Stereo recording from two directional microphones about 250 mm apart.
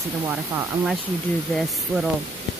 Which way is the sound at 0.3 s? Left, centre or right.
Centre.